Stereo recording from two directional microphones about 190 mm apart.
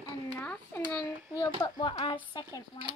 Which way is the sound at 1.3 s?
20° left (ahead or behind).